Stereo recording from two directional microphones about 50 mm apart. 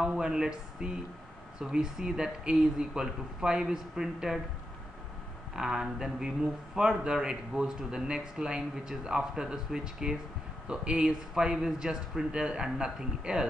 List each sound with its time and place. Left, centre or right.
0.0 s speech: centre
5.6 s speech: centre